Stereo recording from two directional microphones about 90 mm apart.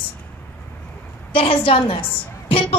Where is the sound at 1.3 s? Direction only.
90° left.